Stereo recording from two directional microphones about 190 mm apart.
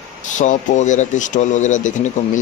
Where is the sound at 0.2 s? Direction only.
40° left (ahead or behind).